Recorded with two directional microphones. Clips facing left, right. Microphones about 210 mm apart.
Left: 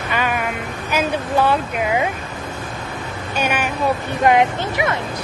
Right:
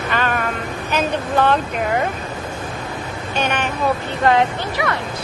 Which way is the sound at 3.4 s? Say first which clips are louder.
Even; 10° left (ahead or behind).